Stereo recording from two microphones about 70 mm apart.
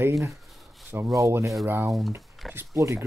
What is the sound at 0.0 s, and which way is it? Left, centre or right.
Speech, right.